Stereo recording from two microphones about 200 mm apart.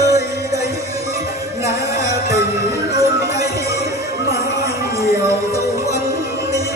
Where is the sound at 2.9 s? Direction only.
15° right (ahead or behind).